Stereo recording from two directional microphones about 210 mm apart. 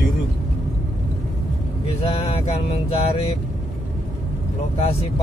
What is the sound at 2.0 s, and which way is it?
Speech, 30° left (ahead or behind).